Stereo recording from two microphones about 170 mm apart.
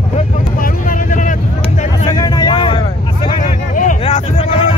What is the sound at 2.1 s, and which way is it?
Vehicle, 25° left (ahead or behind).